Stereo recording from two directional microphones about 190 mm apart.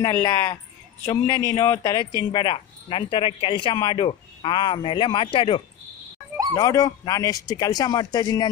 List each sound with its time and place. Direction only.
0.0 s speech: 15° left (ahead or behind)